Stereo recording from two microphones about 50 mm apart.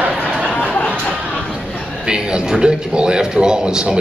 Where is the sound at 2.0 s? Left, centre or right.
Centre.